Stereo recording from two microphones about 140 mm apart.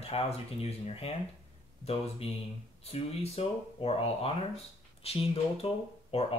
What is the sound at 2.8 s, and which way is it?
Speech, 45° left (ahead or behind).